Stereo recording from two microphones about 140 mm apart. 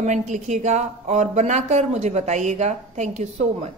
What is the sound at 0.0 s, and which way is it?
Speech, 60° right (ahead or behind).